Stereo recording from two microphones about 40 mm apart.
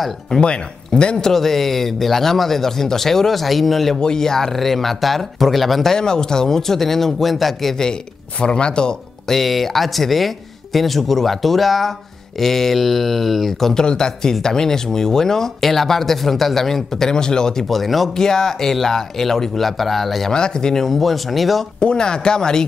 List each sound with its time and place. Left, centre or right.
0.4 s speech: left
1.3 s speech: centre
4.0 s speech: centre
5.9 s speech: centre
7.7 s speech: centre
9.3 s speech: centre
17.6 s speech: centre
18.1 s speech: centre
20.3 s speech: left
20.8 s speech: centre
21.7 s speech: left